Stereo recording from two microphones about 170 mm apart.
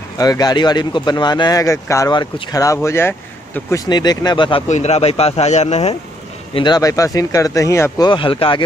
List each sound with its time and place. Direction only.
0.2 s speech: 25° left (ahead or behind)
4.6 s speech: 40° left (ahead or behind)
6.5 s speech: 25° left (ahead or behind)
8.1 s speech: 30° left (ahead or behind)